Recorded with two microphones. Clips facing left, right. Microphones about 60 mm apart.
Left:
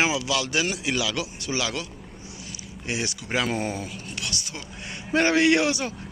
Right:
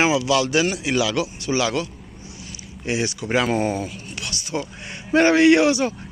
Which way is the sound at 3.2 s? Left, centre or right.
Right.